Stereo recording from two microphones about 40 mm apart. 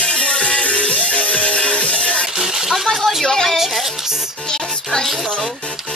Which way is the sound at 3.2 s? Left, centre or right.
Centre.